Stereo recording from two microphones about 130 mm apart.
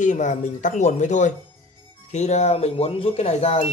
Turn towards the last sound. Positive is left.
turn(degrees=50)  # may be behind; listen again after turning